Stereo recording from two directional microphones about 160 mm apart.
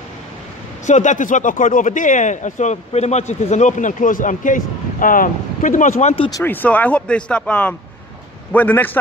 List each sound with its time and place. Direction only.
0.8 s speech: 50° left (ahead or behind)
6.3 s speech: 10° left (ahead or behind)